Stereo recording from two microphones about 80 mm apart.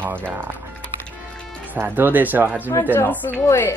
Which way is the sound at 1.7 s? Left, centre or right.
Right.